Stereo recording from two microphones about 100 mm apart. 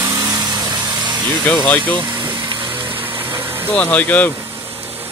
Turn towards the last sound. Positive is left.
turn(degrees=15)  # may be behind; listen again after turning